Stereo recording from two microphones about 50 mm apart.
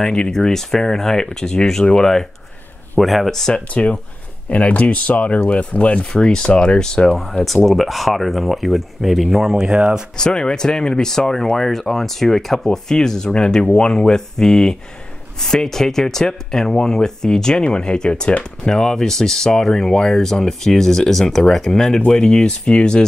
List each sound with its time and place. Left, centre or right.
0.0 s speech: centre
3.7 s speech: left
6.1 s speech: centre
7.4 s speech: centre
10.1 s speech: centre